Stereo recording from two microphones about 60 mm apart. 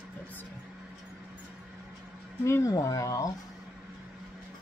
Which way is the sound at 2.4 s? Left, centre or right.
Left.